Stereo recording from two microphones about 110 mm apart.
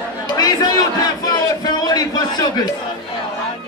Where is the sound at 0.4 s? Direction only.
35° left (ahead or behind).